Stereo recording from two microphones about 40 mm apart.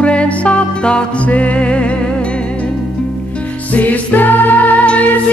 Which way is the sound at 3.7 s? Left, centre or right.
Left.